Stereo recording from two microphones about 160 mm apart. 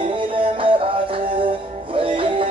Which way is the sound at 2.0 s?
35° right (ahead or behind).